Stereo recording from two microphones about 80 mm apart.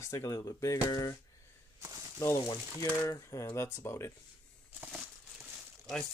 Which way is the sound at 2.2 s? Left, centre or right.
Left.